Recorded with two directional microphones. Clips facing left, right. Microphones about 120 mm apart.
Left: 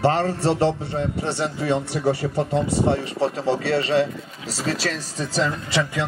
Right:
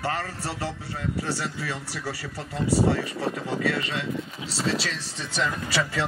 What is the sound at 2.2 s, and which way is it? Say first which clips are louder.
Speech: left 12 dB; 55° left (ahead or behind).